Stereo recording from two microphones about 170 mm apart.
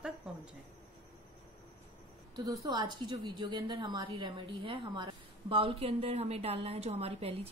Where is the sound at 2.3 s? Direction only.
25° right (ahead or behind).